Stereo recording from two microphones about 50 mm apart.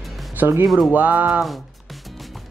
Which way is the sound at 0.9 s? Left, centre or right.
Right.